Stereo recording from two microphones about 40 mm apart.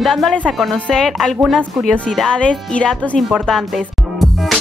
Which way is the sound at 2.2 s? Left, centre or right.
Left.